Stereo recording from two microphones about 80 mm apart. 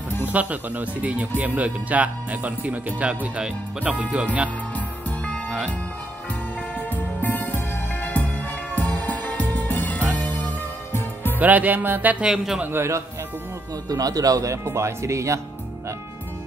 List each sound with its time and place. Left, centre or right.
0.2 s speech: centre
4.7 s music: centre
7.2 s music: left
11.3 s speech: right
12.3 s a man's voice: centre
12.7 s speech: right
13.8 s speech: right